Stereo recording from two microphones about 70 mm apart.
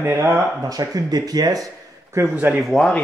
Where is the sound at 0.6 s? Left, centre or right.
Right.